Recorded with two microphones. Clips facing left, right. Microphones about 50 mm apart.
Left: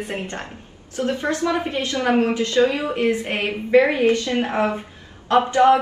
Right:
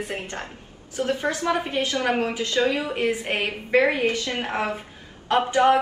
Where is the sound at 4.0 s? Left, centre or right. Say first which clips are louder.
Left 6 dB; left.